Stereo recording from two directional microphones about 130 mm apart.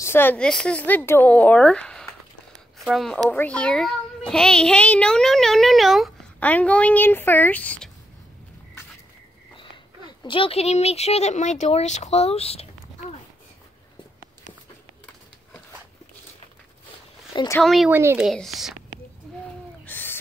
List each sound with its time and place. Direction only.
0.0 s speech: 15° left (ahead or behind)
0.4 s a child's voice: 5° left (ahead or behind)
3.3 s a child's voice: 10° left (ahead or behind)
6.4 s speech: 10° left (ahead or behind)
10.2 s speech: 40° left (ahead or behind)
17.6 s a child's voice: centre (ahead or behind)
17.8 s speech: 15° right (ahead or behind)
18.1 s a child's voice: centre (ahead or behind)
19.9 s owl: 15° left (ahead or behind)